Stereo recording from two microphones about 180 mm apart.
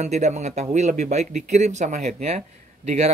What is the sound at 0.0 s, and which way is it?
Speech, 40° right (ahead or behind).